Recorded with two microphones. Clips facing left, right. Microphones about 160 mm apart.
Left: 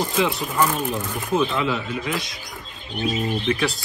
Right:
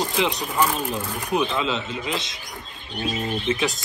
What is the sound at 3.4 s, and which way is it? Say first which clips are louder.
Speech: even; 20° right (ahead or behind).